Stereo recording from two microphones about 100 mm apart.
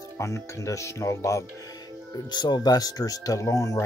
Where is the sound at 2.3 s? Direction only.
45° left (ahead or behind).